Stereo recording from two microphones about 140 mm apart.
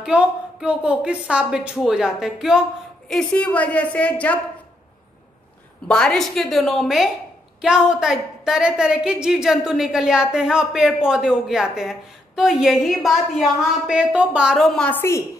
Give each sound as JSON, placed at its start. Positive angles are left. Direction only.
{"t": 0.0, "sound": "a woman's voice", "side_deg": -5}
{"t": 3.1, "sound": "a woman's voice", "side_deg": 5}
{"t": 5.9, "sound": "a woman's voice", "side_deg": 5}
{"t": 14.8, "sound": "a woman's voice", "side_deg": 15}